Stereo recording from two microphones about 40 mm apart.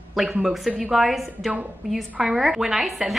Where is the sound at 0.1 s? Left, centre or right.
Centre.